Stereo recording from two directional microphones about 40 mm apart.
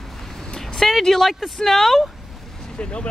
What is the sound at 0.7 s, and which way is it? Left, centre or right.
Speech, centre.